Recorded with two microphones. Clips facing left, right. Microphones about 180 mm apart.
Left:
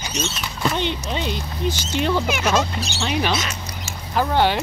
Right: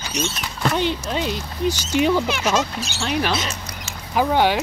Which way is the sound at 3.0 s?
Centre (ahead or behind).